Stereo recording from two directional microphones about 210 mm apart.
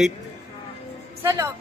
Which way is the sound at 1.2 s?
15° right (ahead or behind).